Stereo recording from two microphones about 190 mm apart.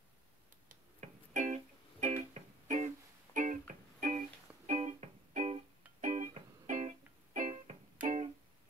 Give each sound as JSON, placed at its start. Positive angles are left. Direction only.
{"t": 0.7, "sound": "music", "side_deg": -40}